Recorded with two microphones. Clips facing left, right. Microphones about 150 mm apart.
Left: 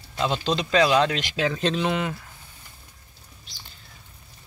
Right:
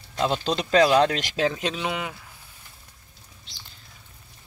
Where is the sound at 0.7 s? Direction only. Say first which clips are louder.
Right 2 dB; 45° right (ahead or behind).